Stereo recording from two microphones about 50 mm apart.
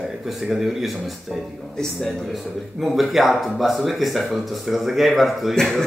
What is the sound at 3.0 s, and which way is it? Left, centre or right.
A man's voice, centre.